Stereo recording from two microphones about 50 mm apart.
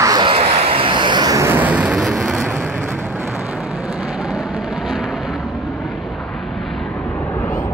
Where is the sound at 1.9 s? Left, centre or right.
Centre.